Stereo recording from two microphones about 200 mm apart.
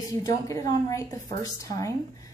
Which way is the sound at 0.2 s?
15° left (ahead or behind).